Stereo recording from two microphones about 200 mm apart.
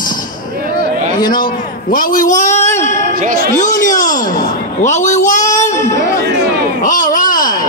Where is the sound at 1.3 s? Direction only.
45° left (ahead or behind).